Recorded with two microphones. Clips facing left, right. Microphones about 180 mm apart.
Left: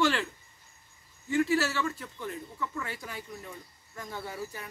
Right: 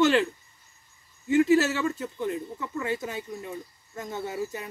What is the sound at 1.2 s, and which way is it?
Speech, 20° right (ahead or behind).